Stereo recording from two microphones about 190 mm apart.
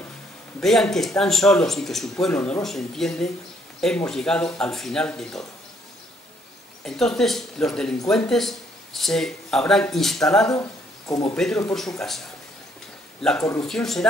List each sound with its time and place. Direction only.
0.6 s speech: centre (ahead or behind)
6.8 s speech: centre (ahead or behind)
10.4 s speech: 15° left (ahead or behind)
11.3 s speech: 5° left (ahead or behind)
13.2 s speech: 5° left (ahead or behind)